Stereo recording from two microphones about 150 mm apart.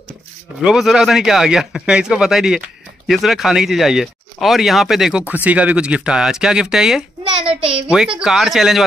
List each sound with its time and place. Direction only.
0.7 s speech: centre (ahead or behind)
7.4 s a child's voice: 40° right (ahead or behind)
8.2 s speech: centre (ahead or behind)